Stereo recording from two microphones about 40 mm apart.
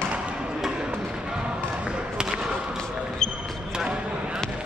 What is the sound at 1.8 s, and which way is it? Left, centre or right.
Basketball bounce, centre.